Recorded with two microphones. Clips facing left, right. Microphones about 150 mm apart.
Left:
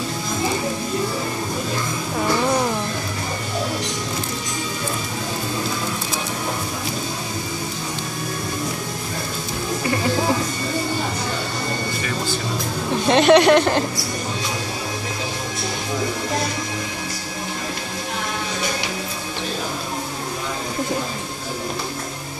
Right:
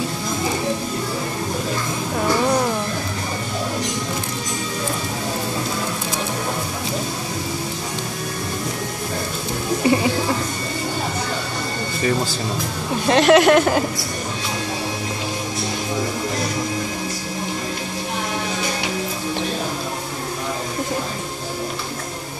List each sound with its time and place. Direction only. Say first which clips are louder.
9.8 s music: right 7 dB; 25° right (ahead or behind)
13.0 s speech: even; centre (ahead or behind)